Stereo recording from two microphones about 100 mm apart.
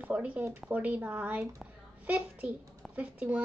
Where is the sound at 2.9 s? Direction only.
15° right (ahead or behind).